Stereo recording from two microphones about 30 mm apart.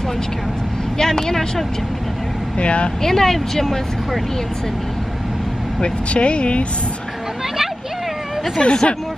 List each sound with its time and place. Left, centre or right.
0.9 s speech: centre
2.5 s speech: left
3.0 s speech: centre
5.8 s speech: left
8.5 s speech: left